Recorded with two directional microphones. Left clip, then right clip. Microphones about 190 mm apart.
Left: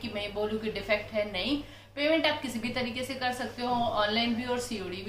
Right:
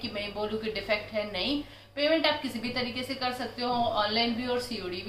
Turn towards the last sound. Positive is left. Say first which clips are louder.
# right 1 dB
turn(degrees=0)  # may be behind; listen again after turning